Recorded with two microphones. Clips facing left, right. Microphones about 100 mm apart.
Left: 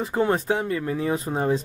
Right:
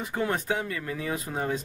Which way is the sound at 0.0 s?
30° left (ahead or behind).